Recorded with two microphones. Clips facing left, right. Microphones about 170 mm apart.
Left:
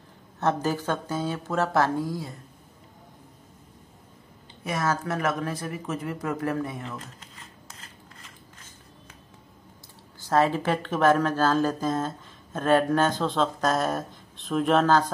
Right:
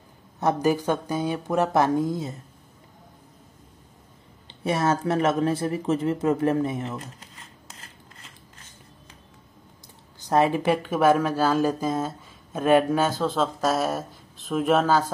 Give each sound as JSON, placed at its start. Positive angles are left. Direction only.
{"t": 0.4, "sound": "speech", "side_deg": -15}
{"t": 4.6, "sound": "speech", "side_deg": -30}
{"t": 10.2, "sound": "speech", "side_deg": -15}